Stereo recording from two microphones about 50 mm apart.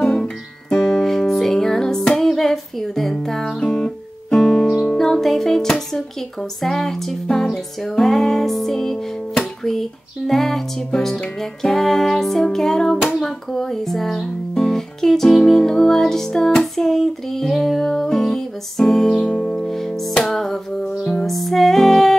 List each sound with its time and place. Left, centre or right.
0.0 s music: centre
3.6 s music: centre
4.4 s music: centre; by 19.7 s left
19.7 s music: centre